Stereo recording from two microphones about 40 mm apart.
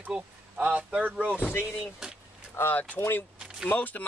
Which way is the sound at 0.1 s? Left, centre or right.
Right.